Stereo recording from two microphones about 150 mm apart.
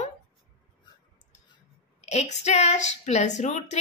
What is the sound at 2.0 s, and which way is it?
Speech, 45° left (ahead or behind).